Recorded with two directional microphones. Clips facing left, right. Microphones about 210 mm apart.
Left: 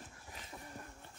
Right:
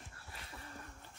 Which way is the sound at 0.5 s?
10° left (ahead or behind).